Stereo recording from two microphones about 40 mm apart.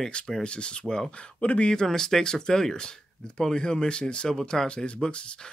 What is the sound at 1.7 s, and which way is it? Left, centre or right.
Speech, centre.